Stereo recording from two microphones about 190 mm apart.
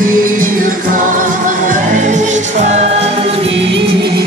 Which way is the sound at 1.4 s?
45° right (ahead or behind).